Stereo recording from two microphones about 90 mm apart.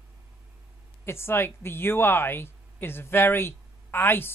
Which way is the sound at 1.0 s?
25° left (ahead or behind).